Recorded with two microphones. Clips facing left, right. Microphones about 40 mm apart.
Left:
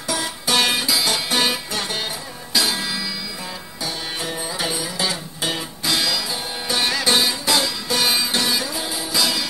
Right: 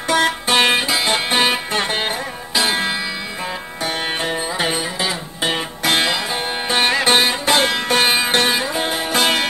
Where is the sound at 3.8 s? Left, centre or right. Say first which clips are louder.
Right 6 dB; right.